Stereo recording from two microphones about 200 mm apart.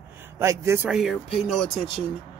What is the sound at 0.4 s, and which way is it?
Speech, 15° right (ahead or behind).